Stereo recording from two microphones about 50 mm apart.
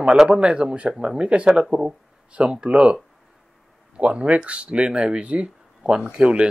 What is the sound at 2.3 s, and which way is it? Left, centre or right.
Speech, right.